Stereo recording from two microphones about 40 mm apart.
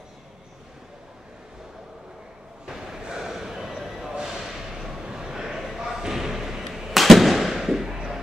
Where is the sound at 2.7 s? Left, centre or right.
Centre.